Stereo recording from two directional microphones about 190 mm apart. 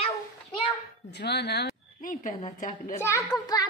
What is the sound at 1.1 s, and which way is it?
A woman's voice, 60° left (ahead or behind).